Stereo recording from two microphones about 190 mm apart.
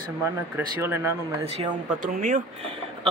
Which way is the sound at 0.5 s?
10° right (ahead or behind).